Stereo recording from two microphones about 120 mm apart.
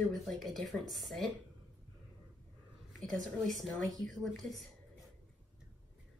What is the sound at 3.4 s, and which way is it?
Speech, centre (ahead or behind).